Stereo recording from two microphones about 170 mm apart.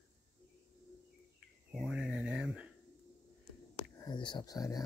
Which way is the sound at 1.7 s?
Centre (ahead or behind).